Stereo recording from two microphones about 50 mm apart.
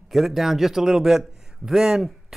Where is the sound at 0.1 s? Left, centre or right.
Centre.